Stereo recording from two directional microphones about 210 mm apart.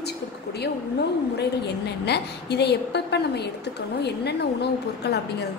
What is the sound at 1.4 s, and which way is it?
A woman's voice, 50° left (ahead or behind).